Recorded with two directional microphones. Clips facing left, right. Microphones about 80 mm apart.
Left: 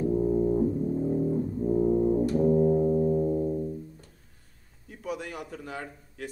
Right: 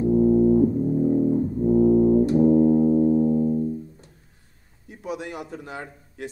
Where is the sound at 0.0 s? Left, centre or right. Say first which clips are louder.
Right 7 dB; centre.